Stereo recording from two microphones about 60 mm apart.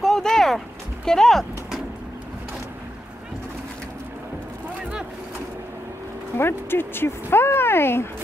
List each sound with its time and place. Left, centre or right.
0.0 s a sound: centre
1.0 s speech: centre
6.3 s speech: left